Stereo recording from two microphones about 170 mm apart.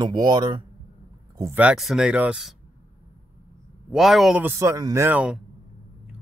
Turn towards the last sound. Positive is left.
turn(degrees=-10)  # may be behind; listen again after turning